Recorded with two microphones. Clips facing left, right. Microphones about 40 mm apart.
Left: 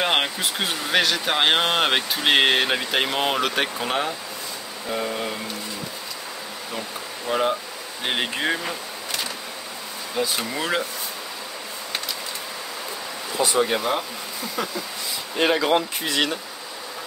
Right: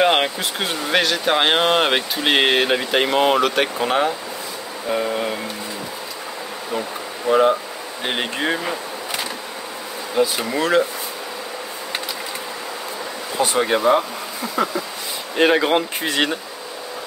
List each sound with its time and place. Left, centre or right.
0.0 s speech: centre
7.2 s speech: centre
8.5 s a sound: centre
10.1 s speech: centre
13.4 s speech: right
13.7 s speech: centre
15.3 s speech: right